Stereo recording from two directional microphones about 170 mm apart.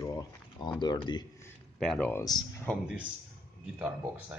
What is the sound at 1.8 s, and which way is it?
Speech, 5° left (ahead or behind).